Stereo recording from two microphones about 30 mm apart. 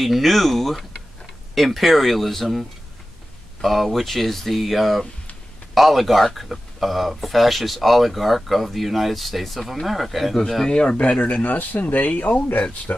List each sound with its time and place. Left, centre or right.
0.0 s speech: centre
3.6 s speech: centre
10.7 s speech: left
11.1 s speech: left
12.1 s speech: left